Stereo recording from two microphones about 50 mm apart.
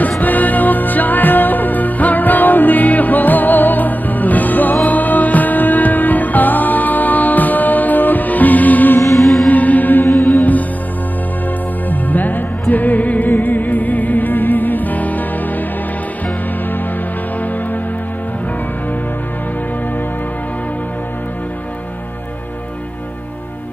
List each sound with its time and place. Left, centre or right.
0.2 s music: left
9.1 s music: centre
9.5 s music: left
11.9 s music: left